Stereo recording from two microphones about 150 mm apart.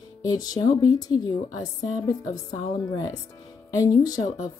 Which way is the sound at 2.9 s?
25° left (ahead or behind).